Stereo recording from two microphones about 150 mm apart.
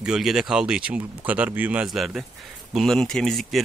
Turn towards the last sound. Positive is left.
turn(degrees=0)  # may be behind; listen again after turning